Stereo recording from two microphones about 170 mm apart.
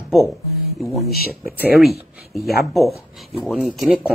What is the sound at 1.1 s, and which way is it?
Speech, 60° left (ahead or behind).